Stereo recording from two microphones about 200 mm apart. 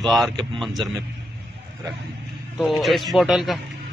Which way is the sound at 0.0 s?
Centre (ahead or behind).